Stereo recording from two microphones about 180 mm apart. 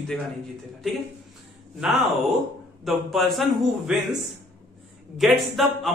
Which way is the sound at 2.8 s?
Centre (ahead or behind).